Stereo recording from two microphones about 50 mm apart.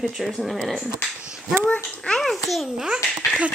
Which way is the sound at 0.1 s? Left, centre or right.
Centre.